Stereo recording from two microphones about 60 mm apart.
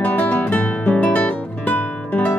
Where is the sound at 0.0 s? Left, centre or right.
Left.